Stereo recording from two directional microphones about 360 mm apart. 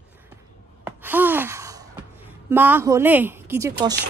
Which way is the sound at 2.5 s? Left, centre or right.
Centre.